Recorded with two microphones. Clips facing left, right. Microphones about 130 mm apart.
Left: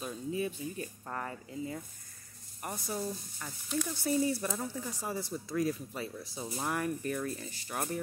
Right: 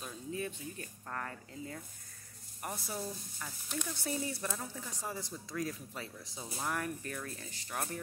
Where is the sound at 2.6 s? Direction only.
Centre (ahead or behind).